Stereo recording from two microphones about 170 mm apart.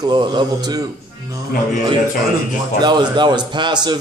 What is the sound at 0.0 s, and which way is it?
Speech, 25° right (ahead or behind).